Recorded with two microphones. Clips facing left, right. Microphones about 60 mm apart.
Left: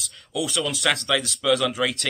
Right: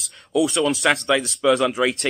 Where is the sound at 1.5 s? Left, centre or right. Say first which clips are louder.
Right 4 dB; centre.